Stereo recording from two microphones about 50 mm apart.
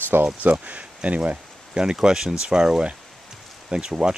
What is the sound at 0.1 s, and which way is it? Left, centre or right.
Speech, right.